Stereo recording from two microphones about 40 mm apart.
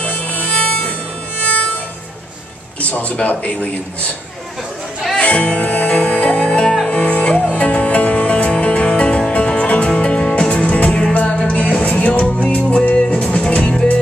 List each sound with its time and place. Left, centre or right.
0.3 s music: left
2.8 s speech: left
5.1 s music: left